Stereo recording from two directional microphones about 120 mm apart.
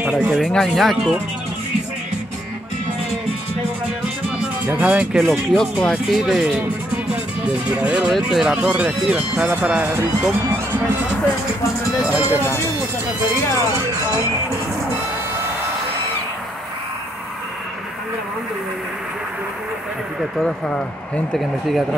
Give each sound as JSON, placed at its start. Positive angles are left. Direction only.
{"t": 0.0, "sound": "speech", "side_deg": -5}
{"t": 4.7, "sound": "speech", "side_deg": -10}
{"t": 5.2, "sound": "speech", "side_deg": 5}
{"t": 12.0, "sound": "speech", "side_deg": -15}
{"t": 13.6, "sound": "music", "side_deg": -25}
{"t": 20.2, "sound": "speech", "side_deg": 0}